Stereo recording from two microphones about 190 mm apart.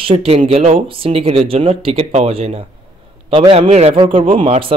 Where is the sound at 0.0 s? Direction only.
30° right (ahead or behind).